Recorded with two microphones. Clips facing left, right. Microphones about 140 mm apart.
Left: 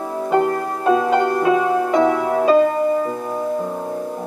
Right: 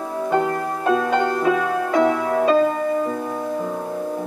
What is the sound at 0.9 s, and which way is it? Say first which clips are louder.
Music: left 3 dB; 10° left (ahead or behind).